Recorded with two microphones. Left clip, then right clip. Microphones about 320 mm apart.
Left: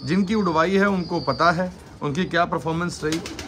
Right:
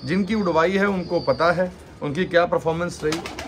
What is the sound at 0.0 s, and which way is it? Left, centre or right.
A man's voice, centre.